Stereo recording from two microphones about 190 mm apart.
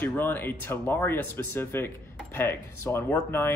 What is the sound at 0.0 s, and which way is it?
Speech, 10° left (ahead or behind).